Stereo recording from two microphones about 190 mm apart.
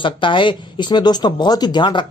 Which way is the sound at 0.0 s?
25° left (ahead or behind).